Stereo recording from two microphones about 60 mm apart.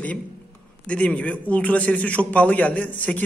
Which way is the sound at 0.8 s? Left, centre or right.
Centre.